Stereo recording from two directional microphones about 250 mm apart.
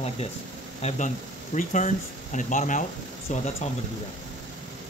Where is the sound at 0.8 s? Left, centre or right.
Left.